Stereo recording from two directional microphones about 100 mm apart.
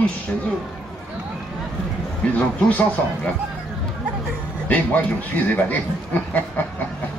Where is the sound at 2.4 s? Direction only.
15° left (ahead or behind).